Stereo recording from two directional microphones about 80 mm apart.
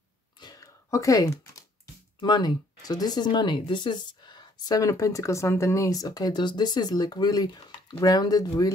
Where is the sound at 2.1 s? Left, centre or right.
Left.